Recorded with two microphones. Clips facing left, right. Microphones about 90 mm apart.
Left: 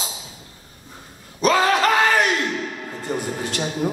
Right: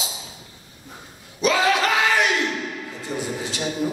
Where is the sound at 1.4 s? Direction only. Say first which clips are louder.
Left 2 dB; 40° left (ahead or behind).